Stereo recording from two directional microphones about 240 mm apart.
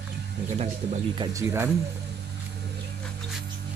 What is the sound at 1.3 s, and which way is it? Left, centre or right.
Speech, centre.